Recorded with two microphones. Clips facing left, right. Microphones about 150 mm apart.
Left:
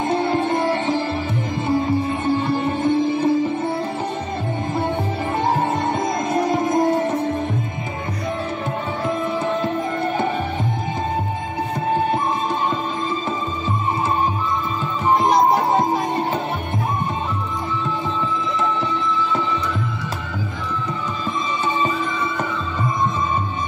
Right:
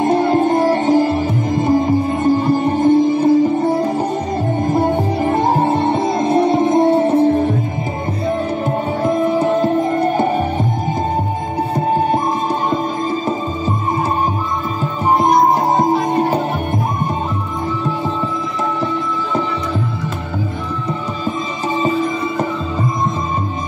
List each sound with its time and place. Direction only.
0.0 s sitar: 40° right (ahead or behind)
4.6 s music: 40° right (ahead or behind)
9.0 s music: 40° right (ahead or behind)
11.7 s music: 40° right (ahead or behind)
15.5 s music: 40° right (ahead or behind)
21.7 s music: 35° right (ahead or behind)